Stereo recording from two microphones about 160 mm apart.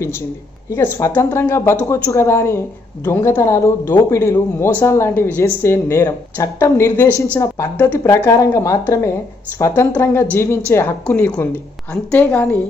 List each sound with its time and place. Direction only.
0.7 s a man's voice: 15° left (ahead or behind)